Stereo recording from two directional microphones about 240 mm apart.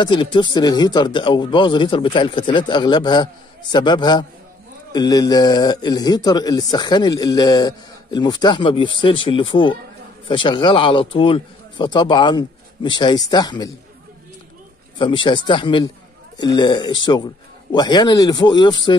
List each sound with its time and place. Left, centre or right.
0.0 s a man's voice: centre
15.0 s a man's voice: left